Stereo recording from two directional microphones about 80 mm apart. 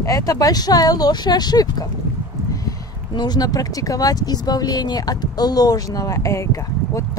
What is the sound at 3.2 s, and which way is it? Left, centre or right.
Speech, left.